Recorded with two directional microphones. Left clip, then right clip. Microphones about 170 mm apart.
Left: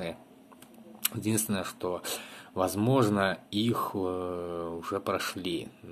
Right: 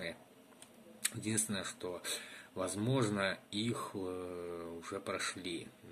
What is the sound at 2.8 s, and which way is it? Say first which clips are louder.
Speech: left 9 dB; 10° right (ahead or behind).